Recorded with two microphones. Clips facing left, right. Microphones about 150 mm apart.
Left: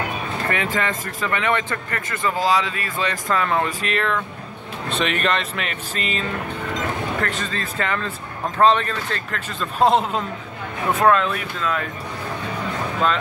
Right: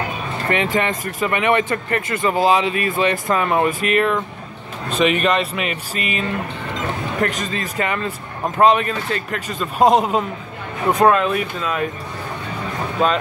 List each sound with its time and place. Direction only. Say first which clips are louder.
0.7 s speech: right 4 dB; 20° right (ahead or behind)